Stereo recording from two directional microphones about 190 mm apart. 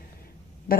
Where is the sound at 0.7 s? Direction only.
50° left (ahead or behind).